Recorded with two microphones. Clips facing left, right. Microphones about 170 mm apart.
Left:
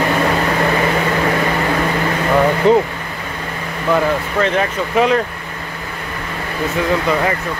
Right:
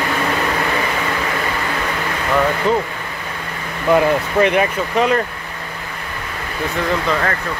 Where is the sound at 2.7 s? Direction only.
20° left (ahead or behind).